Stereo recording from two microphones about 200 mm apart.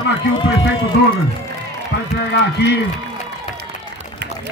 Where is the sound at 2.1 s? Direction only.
55° left (ahead or behind).